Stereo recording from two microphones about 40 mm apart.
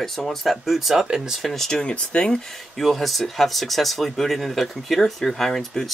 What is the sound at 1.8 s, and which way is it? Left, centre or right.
Speech, left.